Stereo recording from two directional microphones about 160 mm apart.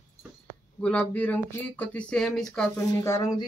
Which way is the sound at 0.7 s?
10° left (ahead or behind).